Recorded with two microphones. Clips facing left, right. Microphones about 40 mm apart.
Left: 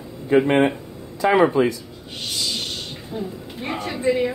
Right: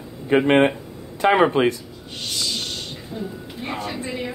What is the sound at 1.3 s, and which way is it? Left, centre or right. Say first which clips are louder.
Speech: even; right.